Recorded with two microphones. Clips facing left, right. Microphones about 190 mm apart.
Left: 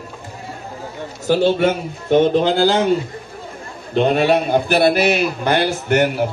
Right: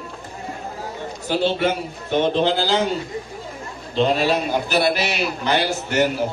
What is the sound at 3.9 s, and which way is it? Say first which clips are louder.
A man's voice: left 4 dB; 55° left (ahead or behind).